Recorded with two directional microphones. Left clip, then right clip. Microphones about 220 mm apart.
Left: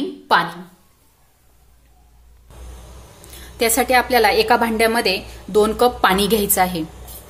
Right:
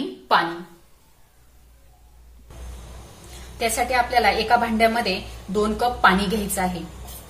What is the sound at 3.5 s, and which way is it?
A woman's voice, 50° left (ahead or behind).